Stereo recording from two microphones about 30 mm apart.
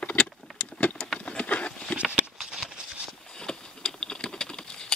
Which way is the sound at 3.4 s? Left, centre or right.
Left.